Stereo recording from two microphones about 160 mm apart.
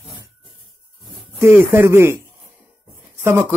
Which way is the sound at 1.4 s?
15° right (ahead or behind).